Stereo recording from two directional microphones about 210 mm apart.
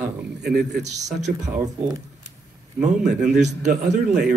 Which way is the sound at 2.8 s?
35° right (ahead or behind).